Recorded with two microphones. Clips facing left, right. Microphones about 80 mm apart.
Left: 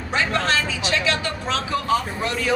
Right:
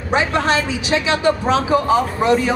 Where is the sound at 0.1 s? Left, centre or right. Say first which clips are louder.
Right 5 dB; centre.